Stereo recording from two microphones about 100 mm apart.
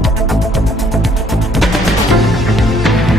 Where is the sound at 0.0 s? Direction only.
Centre (ahead or behind).